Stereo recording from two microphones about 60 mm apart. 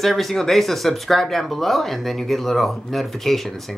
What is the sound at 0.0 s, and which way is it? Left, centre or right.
A child's voice, centre.